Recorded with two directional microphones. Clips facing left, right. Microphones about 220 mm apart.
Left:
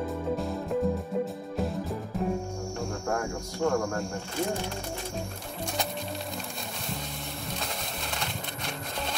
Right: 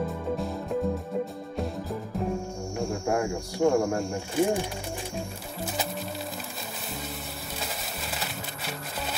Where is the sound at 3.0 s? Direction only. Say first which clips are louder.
Right 4 dB; 15° right (ahead or behind).